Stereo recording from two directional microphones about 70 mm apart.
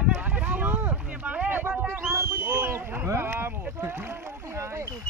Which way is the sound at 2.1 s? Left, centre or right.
Right.